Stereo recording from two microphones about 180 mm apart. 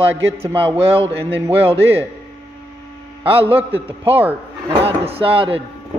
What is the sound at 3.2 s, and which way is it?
Speech, 30° right (ahead or behind).